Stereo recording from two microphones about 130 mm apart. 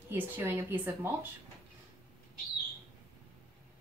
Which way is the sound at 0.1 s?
20° right (ahead or behind).